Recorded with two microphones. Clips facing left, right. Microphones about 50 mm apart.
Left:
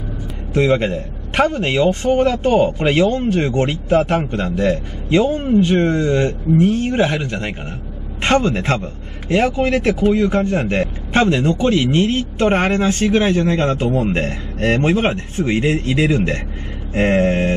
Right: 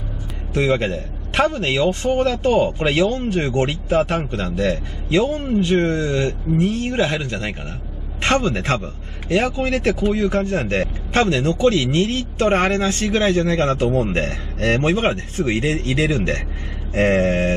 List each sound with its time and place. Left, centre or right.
0.5 s a man's voice: left